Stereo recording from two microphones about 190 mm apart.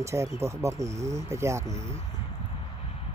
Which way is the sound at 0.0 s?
15° right (ahead or behind).